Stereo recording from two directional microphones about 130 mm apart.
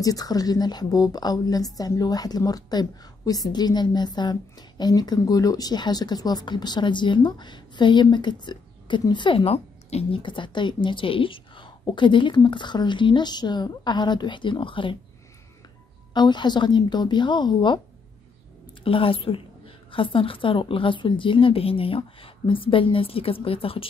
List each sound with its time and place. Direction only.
0.0 s a woman's voice: 30° left (ahead or behind)
16.1 s a woman's voice: 35° left (ahead or behind)
18.9 s a woman's voice: 45° left (ahead or behind)